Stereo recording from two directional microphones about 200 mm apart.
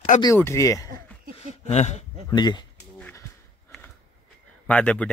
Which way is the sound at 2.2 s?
20° left (ahead or behind).